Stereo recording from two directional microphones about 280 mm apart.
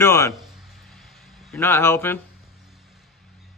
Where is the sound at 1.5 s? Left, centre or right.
Centre.